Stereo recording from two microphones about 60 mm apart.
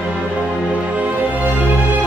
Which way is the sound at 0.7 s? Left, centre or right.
Right.